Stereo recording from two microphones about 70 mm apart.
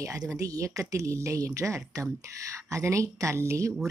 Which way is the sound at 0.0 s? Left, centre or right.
Right.